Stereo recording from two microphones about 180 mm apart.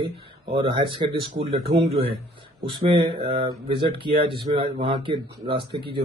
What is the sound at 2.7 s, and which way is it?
Speech, 25° right (ahead or behind).